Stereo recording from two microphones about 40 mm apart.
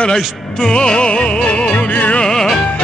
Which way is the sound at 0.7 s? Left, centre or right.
Left.